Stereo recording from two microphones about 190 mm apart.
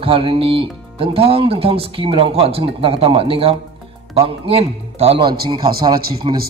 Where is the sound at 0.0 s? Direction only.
30° right (ahead or behind).